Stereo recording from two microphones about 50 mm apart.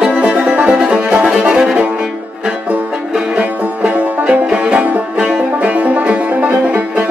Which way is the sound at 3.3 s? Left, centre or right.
Right.